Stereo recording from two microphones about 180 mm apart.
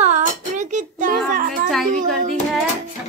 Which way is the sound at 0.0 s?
40° right (ahead or behind).